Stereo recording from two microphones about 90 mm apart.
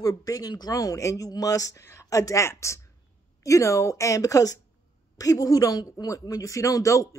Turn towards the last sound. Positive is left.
turn(degrees=35)  # may be behind; listen again after turning